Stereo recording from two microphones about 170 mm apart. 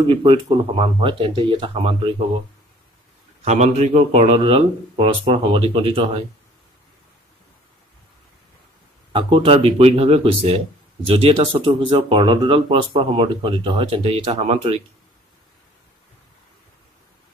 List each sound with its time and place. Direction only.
0.0 s speech: 30° right (ahead or behind)
3.4 s speech: 40° right (ahead or behind)
9.1 s speech: 30° right (ahead or behind)